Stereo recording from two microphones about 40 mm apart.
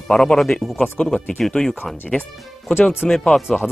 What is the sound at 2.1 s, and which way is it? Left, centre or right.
Speech, left.